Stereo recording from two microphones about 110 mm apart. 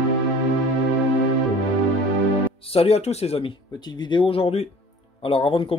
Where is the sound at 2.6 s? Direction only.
65° left (ahead or behind).